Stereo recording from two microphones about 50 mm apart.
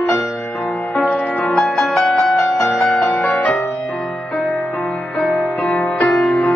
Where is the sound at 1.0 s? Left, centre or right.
Left.